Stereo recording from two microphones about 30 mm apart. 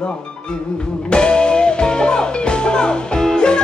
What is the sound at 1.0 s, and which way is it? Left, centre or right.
Music, left.